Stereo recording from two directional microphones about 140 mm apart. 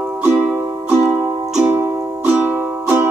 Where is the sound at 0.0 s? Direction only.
15° right (ahead or behind).